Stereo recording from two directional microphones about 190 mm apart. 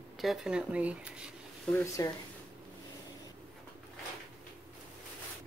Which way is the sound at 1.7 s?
15° left (ahead or behind).